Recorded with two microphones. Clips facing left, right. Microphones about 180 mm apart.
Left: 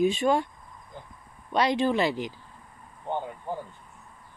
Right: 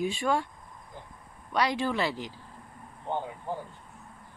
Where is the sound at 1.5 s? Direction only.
20° left (ahead or behind).